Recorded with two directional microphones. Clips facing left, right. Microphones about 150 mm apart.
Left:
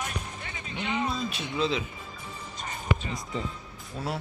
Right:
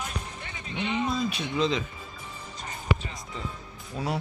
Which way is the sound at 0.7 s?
Centre (ahead or behind).